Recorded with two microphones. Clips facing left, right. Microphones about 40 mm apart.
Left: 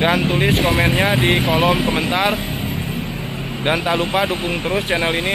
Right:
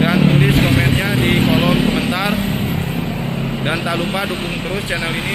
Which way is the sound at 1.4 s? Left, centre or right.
Centre.